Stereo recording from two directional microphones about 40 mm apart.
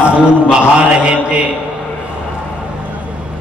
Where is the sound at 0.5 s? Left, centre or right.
Right.